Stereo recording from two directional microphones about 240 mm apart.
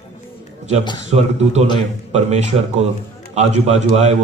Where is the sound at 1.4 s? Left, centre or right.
Right.